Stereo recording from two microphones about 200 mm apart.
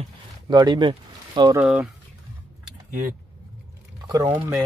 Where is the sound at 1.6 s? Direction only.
5° right (ahead or behind).